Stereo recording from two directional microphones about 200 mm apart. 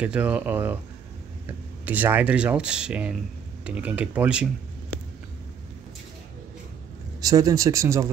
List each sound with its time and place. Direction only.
0.0 s speech: 5° right (ahead or behind)
1.9 s speech: 10° right (ahead or behind)
4.9 s a sound: 5° left (ahead or behind)
7.2 s speech: 20° right (ahead or behind)